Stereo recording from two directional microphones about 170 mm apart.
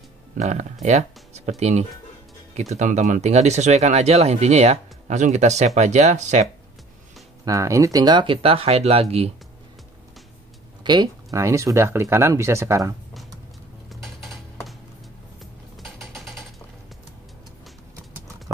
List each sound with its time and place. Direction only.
0.4 s speech: 45° right (ahead or behind)
7.4 s speech: 20° right (ahead or behind); by 9.3 s 35° right (ahead or behind)
10.8 s speech: 25° right (ahead or behind)
13.8 s a sound: centre (ahead or behind)
15.8 s mechanisms: centre (ahead or behind)